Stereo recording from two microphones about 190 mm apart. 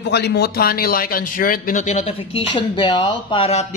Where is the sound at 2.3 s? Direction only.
25° left (ahead or behind).